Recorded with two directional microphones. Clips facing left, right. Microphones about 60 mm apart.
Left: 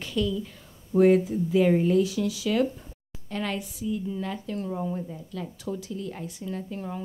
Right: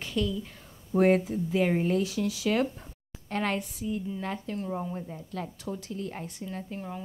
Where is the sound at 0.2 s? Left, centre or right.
Right.